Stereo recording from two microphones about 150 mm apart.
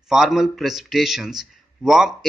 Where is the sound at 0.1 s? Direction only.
Centre (ahead or behind).